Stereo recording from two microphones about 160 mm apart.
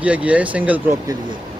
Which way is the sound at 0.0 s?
10° right (ahead or behind).